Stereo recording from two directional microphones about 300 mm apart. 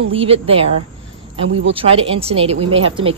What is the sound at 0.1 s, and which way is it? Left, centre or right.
Speech, centre.